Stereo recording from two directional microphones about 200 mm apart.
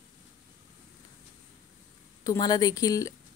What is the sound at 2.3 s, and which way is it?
Speech, 20° left (ahead or behind).